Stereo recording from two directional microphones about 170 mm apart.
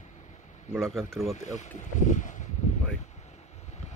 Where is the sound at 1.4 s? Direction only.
45° left (ahead or behind).